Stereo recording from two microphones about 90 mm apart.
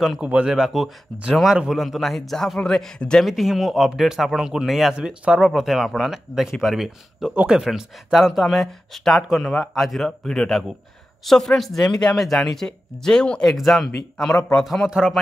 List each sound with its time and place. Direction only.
0.2 s speech: 10° right (ahead or behind); by 3.3 s 10° left (ahead or behind)
3.3 s speech: centre (ahead or behind)
14.9 s speech: 10° right (ahead or behind)